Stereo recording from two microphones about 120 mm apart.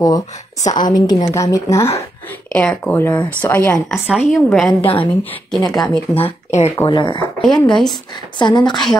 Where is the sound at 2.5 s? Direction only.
5° left (ahead or behind).